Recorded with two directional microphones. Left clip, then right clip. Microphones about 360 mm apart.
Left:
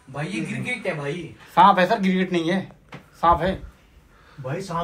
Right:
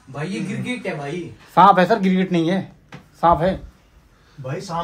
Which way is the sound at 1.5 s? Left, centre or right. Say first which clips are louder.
Right 3 dB; right.